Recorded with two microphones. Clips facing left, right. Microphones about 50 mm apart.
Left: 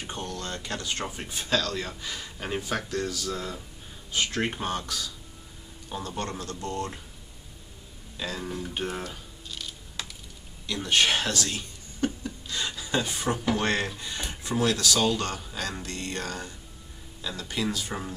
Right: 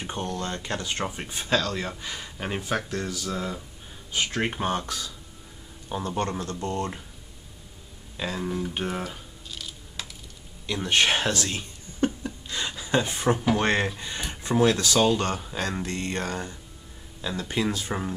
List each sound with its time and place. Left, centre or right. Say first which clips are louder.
0.0 s speech: right 4 dB; right
4.7 s speech: right 2 dB; right
8.2 s music: right 4 dB; centre
10.7 s a sound: right 1 dB; right
13.6 s speech: right 3 dB; right